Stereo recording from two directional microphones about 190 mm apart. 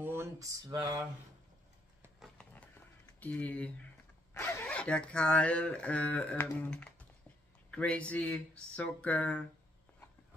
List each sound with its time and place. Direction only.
0.0 s speech: 15° right (ahead or behind)
2.1 s a sound: centre (ahead or behind)
3.2 s speech: 10° left (ahead or behind)